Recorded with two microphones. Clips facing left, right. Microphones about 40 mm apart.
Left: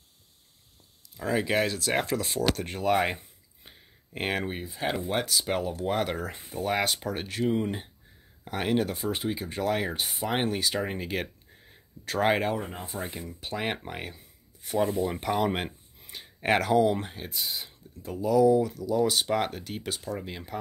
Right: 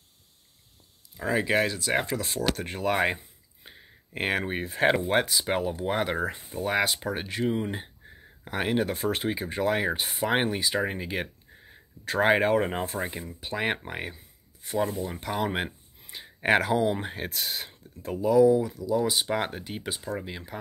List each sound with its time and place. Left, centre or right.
1.1 s speech: centre
2.0 s speech: centre
2.5 s a sound: centre
4.7 s speech: right
5.0 s speech: centre
8.8 s speech: right
12.5 s speech: right
13.2 s speech: centre
14.1 s a sound: centre
15.2 s speech: centre
17.3 s speech: right; by 18.7 s centre
18.7 s speech: centre